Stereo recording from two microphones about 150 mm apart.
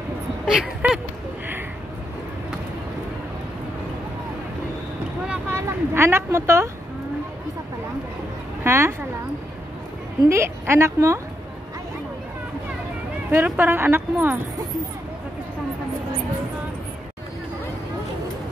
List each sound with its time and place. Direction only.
0.5 s speech: 5° right (ahead or behind)
5.3 s speech: 15° right (ahead or behind)
8.6 s a woman's voice: 15° right (ahead or behind)
10.2 s a woman's voice: 15° right (ahead or behind)
13.3 s a woman's voice: 15° right (ahead or behind)